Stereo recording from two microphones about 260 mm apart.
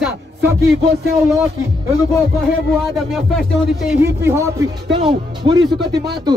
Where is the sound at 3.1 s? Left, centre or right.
Centre.